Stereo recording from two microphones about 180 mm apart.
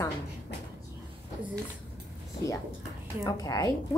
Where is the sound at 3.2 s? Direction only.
20° left (ahead or behind).